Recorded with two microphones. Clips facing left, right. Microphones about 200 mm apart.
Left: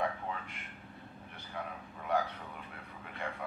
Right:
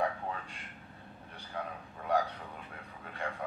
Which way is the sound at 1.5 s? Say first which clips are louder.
Right 2 dB; 35° right (ahead or behind).